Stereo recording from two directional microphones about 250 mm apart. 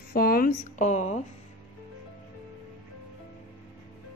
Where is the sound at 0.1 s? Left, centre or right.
Left.